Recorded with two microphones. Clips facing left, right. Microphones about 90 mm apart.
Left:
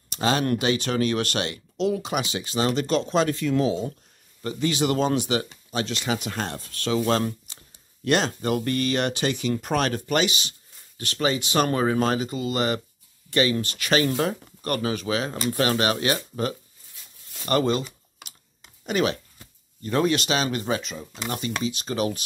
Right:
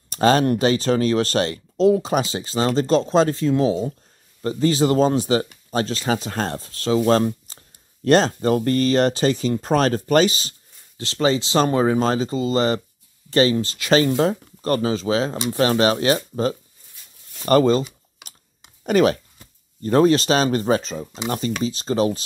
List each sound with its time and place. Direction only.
0.1 s speech: 40° right (ahead or behind)
17.5 s computer keyboard: 35° right (ahead or behind)
18.9 s speech: 40° right (ahead or behind)